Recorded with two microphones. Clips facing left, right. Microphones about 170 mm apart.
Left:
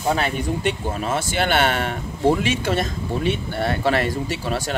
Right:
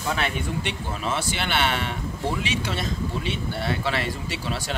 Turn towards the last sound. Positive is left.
turn(degrees=45)  # may be behind; listen again after turning